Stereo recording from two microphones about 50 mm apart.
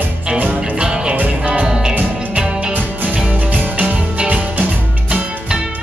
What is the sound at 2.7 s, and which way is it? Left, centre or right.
Music, right.